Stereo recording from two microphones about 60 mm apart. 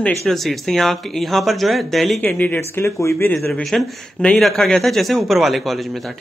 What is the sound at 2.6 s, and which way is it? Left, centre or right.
Speech, left.